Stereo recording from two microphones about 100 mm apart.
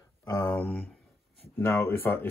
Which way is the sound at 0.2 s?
30° left (ahead or behind).